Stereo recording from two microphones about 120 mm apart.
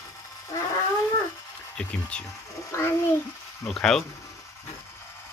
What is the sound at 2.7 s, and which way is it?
Speech, 20° left (ahead or behind).